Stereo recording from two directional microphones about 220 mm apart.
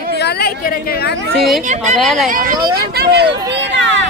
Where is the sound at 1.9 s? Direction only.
Centre (ahead or behind).